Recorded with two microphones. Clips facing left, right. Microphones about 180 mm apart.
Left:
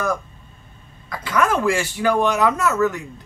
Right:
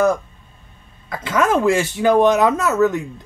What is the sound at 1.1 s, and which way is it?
Speech, 20° right (ahead or behind).